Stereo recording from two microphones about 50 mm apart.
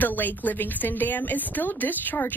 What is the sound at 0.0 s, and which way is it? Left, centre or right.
A woman's voice, left.